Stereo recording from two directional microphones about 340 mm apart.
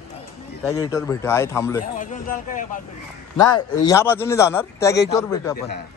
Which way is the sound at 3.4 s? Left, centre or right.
Centre.